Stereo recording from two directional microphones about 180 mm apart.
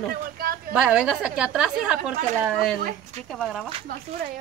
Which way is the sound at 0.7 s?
5° right (ahead or behind).